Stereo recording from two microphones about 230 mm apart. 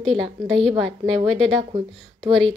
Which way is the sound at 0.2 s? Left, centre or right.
Right.